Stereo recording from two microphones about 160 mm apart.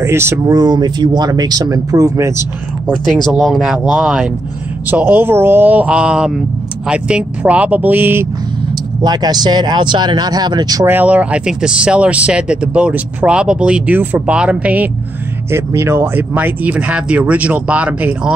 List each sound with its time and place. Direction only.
0.0 s speech: 15° right (ahead or behind)
3.3 s speech: centre (ahead or behind)
9.0 s speech: 25° right (ahead or behind)
10.9 s speech: 10° right (ahead or behind)